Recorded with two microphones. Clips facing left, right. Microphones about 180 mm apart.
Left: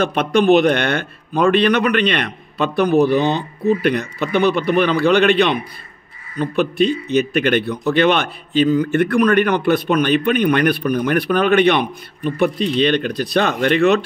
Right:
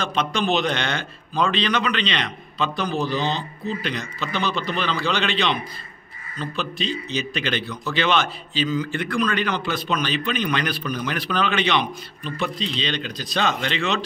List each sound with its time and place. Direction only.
0.0 s a man's voice: 60° left (ahead or behind)